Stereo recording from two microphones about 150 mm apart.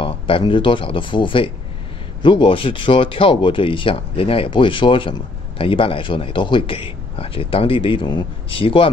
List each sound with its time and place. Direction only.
0.0 s a man's voice: 35° left (ahead or behind)